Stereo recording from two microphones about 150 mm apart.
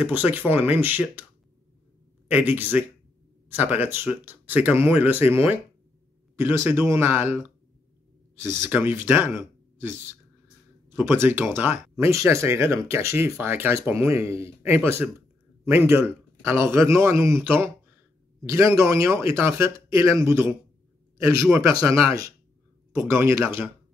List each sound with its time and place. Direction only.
0.0 s speech: 10° right (ahead or behind)
2.2 s speech: 10° right (ahead or behind)
21.6 s speech: 20° right (ahead or behind)